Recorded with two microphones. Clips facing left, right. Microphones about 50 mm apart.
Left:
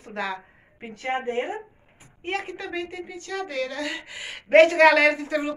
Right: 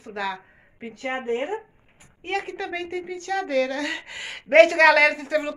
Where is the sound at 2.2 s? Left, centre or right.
Left.